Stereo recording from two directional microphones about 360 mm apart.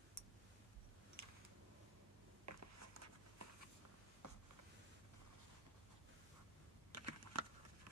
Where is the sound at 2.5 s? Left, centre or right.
Right.